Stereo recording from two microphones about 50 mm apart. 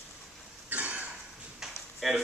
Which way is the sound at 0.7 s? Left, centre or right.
Right.